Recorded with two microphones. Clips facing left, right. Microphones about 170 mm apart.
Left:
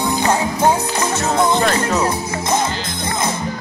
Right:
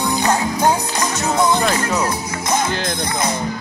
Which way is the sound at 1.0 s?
5° left (ahead or behind).